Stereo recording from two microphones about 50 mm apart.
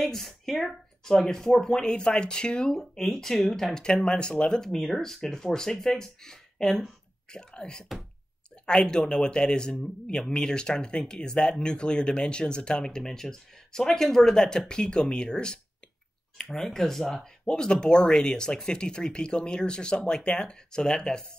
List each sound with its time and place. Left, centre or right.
0.0 s speech: centre
17.5 s speech: centre